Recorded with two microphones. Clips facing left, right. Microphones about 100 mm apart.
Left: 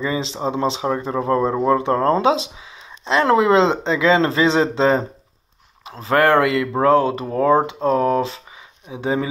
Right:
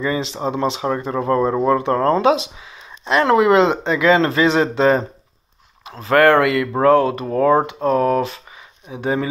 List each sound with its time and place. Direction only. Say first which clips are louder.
0.0 s speech: right 1 dB; 25° left (ahead or behind)